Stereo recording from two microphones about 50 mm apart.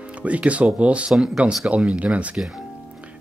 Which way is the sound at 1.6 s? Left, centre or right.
Right.